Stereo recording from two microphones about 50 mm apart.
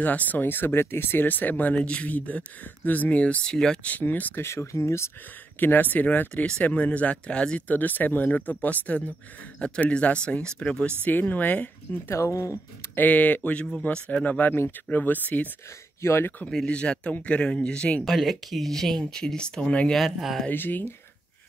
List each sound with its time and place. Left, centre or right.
0.0 s speech: left
1.8 s speech: left
3.8 s speech: left
4.4 s speech: left
5.6 s speech: left
11.1 s speech: left
12.1 s speech: left
12.9 s speech: left
16.0 s speech: left
16.6 s speech: left
18.0 s speech: centre
20.4 s speech: left